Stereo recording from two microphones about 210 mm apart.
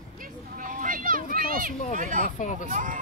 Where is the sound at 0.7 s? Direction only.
40° right (ahead or behind).